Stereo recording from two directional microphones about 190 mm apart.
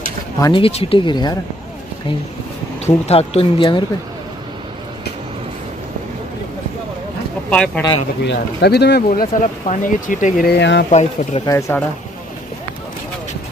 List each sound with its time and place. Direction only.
0.4 s speech: 25° left (ahead or behind)
2.8 s speech: 30° left (ahead or behind)
7.4 s speech: 5° left (ahead or behind)
8.3 s speech: 60° left (ahead or behind)
10.9 s speech: 35° left (ahead or behind)
11.4 s speech: 15° left (ahead or behind)